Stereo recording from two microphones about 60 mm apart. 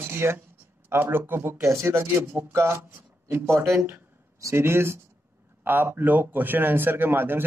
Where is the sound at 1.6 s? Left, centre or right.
Right.